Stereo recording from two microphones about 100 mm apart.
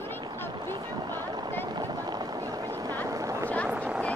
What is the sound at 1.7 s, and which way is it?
Boat, 40° right (ahead or behind).